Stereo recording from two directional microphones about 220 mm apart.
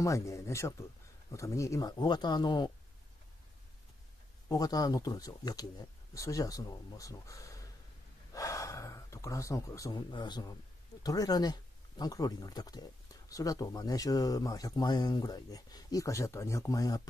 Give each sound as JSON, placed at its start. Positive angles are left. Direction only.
{"t": 0.0, "sound": "speech", "side_deg": 15}
{"t": 4.5, "sound": "speech", "side_deg": 20}